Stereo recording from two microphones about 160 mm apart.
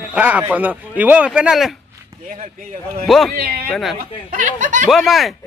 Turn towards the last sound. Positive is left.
turn(degrees=0)  # may be behind; listen again after turning